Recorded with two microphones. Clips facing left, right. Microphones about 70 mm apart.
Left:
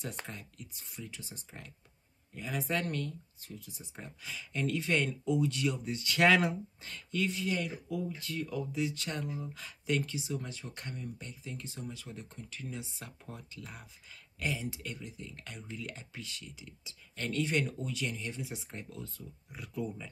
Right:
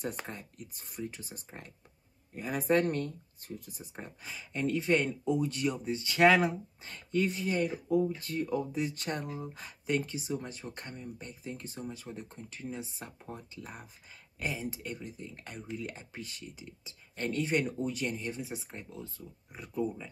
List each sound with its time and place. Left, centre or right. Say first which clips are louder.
0.3 s speech: right 3 dB; right
4.0 s speech: even; right
9.5 s speech: right 2 dB; right
14.4 s speech: even; right
16.4 s speech: right 3 dB; right